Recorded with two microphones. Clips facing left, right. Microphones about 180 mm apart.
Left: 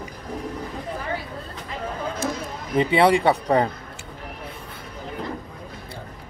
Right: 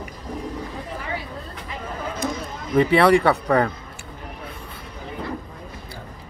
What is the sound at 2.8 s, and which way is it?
Speech, 20° left (ahead or behind).